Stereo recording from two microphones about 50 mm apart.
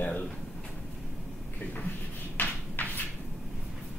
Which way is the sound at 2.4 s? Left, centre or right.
Left.